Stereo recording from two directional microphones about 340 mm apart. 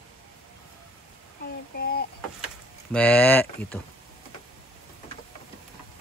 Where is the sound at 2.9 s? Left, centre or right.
Centre.